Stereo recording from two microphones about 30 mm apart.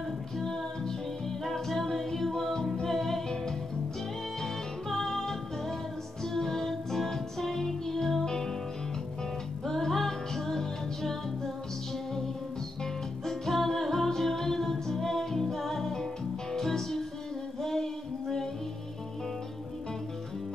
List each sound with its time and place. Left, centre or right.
0.4 s music: centre
4.4 s music: centre
9.7 s music: centre
13.2 s music: centre